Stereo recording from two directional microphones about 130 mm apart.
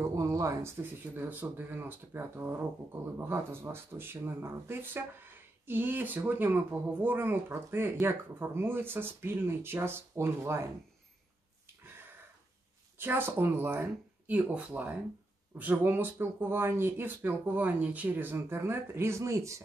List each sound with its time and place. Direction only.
0.1 s speech: 25° right (ahead or behind)
12.9 s speech: 15° right (ahead or behind)